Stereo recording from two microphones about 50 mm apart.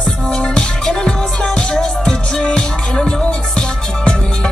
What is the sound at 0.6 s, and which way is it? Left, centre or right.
Music, centre.